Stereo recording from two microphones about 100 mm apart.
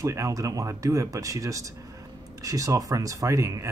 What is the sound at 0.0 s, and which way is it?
Speech, 30° right (ahead or behind).